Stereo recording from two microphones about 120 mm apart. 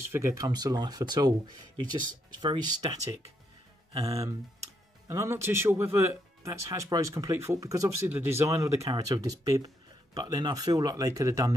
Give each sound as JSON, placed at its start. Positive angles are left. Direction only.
{"t": 0.1, "sound": "speech", "side_deg": -25}